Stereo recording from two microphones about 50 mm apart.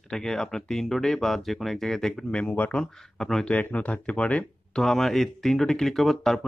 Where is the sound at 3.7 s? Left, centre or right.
Left.